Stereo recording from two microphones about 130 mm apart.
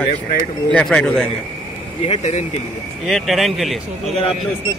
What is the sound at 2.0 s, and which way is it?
Speech, 55° left (ahead or behind).